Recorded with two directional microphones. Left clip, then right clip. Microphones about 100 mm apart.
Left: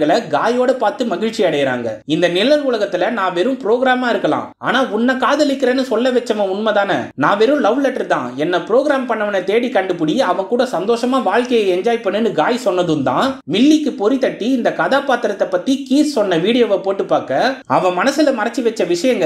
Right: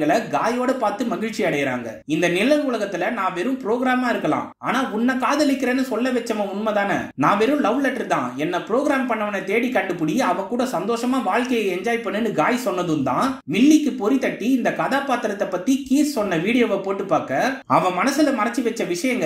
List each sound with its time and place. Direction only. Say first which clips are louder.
0.0 s speech: left 5 dB; 15° left (ahead or behind)
2.1 s speech: left 5 dB; 15° left (ahead or behind)